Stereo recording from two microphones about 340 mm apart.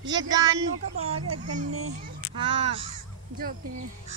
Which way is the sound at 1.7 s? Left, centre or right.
Right.